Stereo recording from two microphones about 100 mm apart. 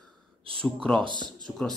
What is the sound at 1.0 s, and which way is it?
Speech, 50° right (ahead or behind).